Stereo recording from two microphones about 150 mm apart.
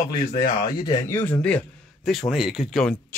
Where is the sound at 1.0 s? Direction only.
15° left (ahead or behind).